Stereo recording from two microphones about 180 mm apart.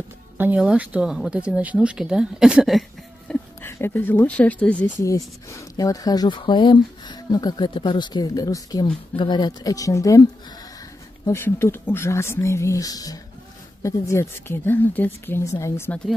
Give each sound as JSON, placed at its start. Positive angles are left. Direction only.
{"t": 0.4, "sound": "speech", "side_deg": -10}
{"t": 3.3, "sound": "speech", "side_deg": 15}
{"t": 5.1, "sound": "speech", "side_deg": 20}
{"t": 11.2, "sound": "speech", "side_deg": 15}